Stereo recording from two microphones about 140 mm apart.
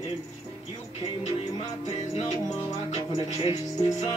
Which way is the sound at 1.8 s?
50° left (ahead or behind).